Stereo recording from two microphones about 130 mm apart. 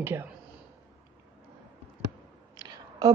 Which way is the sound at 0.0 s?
15° right (ahead or behind).